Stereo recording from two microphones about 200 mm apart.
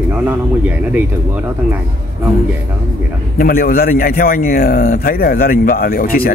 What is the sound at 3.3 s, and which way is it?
A man's voice, 45° left (ahead or behind).